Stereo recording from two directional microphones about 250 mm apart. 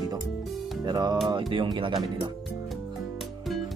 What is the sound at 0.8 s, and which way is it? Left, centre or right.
Speech, centre.